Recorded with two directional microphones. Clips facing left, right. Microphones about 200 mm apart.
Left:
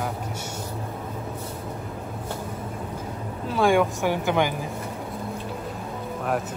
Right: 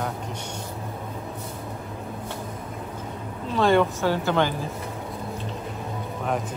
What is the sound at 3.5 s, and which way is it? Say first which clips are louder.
A woman's voice: even; 10° left (ahead or behind).